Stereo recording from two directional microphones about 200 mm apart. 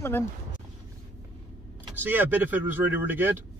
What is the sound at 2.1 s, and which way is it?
Speech, 10° right (ahead or behind).